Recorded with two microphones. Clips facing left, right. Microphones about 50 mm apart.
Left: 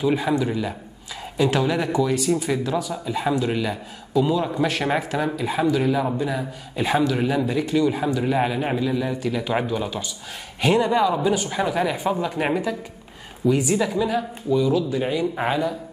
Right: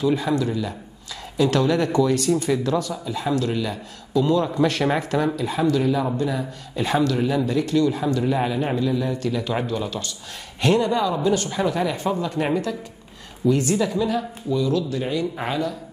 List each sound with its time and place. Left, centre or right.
0.0 s speech: centre